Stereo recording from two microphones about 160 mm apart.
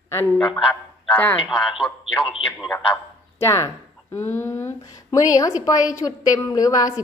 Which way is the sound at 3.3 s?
20° left (ahead or behind).